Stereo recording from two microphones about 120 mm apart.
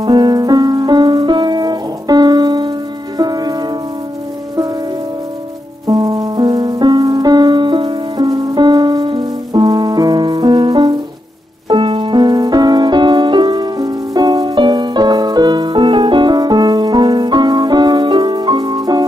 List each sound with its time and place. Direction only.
0.0 s music: 35° right (ahead or behind)
5.9 s music: 30° right (ahead or behind)
11.7 s music: 45° right (ahead or behind)